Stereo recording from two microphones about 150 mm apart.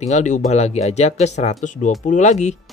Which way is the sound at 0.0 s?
50° left (ahead or behind).